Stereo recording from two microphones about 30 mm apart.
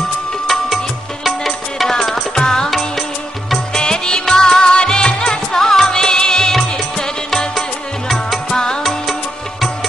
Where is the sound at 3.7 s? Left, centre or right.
Left.